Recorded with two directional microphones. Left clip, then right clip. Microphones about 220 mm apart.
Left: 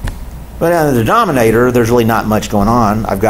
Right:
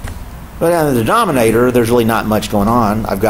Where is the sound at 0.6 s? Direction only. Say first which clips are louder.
Left 1 dB; 15° left (ahead or behind).